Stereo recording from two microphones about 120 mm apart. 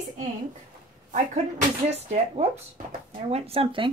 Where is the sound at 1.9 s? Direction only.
65° right (ahead or behind).